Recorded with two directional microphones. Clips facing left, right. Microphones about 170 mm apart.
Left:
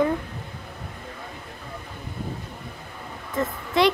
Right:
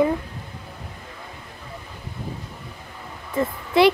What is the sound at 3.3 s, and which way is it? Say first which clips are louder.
Speech: right 4 dB; 5° right (ahead or behind).